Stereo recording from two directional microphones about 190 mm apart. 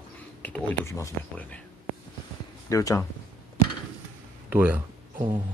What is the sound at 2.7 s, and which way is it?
Speech, 15° left (ahead or behind).